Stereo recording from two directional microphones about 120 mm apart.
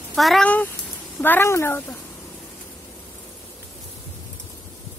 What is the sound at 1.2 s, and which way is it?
Speech, 20° left (ahead or behind).